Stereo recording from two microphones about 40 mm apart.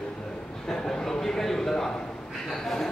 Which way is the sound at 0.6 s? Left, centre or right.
Centre.